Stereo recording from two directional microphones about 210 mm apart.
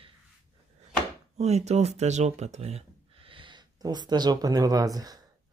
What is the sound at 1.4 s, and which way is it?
Speech, 30° right (ahead or behind).